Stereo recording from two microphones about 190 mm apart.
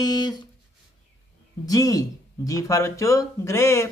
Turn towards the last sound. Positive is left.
turn(degrees=15)  # may be behind; listen again after turning